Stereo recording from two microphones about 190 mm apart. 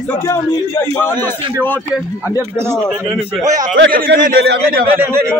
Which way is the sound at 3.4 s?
40° right (ahead or behind).